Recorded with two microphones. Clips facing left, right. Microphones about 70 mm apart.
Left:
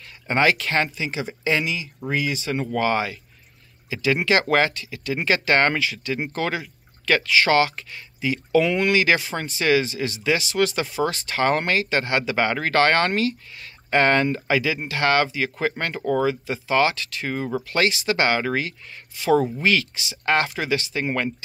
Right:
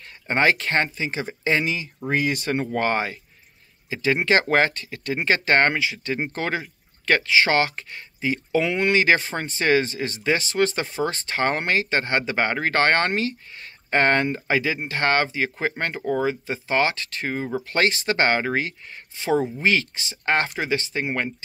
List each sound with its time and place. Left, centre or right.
0.3 s speech: right
2.6 s speech: right
5.7 s speech: right
6.0 s speech: right
21.0 s speech: centre